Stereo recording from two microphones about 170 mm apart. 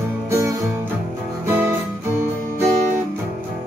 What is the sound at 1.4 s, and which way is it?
Guitar, 15° right (ahead or behind).